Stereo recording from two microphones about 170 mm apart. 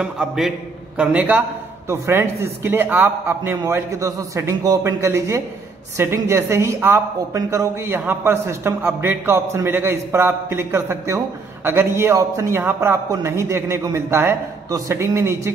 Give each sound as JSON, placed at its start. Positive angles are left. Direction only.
{"t": 0.0, "sound": "a man's voice", "side_deg": -5}